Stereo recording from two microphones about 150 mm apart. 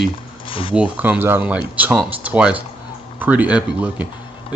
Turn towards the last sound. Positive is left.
turn(degrees=-10)  # may be behind; listen again after turning